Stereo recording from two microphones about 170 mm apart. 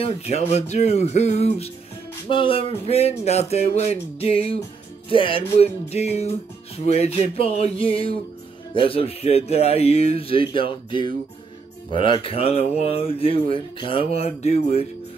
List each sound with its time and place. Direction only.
0.0 s speech: 40° left (ahead or behind)